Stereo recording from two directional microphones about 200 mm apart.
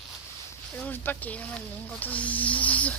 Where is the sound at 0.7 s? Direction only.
10° left (ahead or behind).